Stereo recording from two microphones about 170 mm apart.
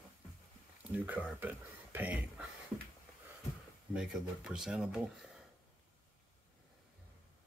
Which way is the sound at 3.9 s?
5° right (ahead or behind).